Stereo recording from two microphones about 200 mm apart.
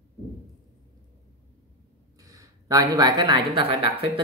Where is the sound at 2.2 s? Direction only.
15° right (ahead or behind).